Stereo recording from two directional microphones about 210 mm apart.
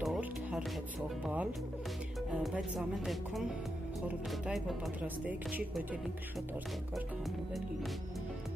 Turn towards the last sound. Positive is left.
turn(degrees=0)  # may be behind; listen again after turning